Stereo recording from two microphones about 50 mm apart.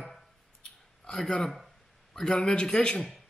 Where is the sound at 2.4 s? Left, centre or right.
Centre.